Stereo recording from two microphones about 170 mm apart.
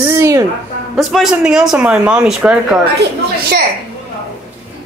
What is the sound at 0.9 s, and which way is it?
Speech, centre (ahead or behind).